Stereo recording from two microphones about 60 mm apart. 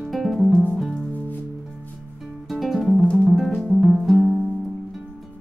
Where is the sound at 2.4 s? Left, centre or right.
Centre.